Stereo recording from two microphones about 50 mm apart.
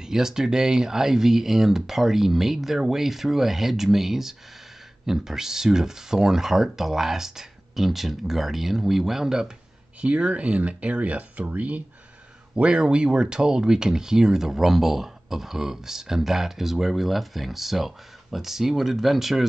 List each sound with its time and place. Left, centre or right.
0.0 s speech: centre
10.0 s speech: right; by 19.4 s centre